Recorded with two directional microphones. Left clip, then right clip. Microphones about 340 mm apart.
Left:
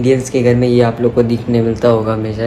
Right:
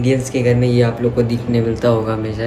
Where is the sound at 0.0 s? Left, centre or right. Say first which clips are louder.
Left 4 dB; centre.